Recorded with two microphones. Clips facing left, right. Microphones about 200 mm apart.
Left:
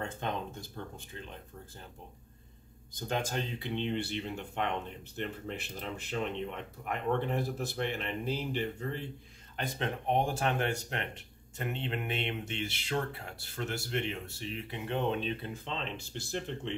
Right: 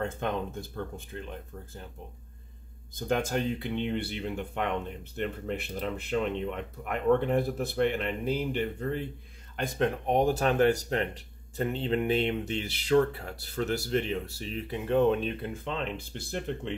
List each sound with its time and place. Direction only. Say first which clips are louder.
0.0 s speech: right 5 dB; 55° right (ahead or behind)
2.9 s speech: right 6 dB; 50° right (ahead or behind)
9.6 s speech: right 7 dB; 45° right (ahead or behind)
14.9 s speech: right 8 dB; 50° right (ahead or behind)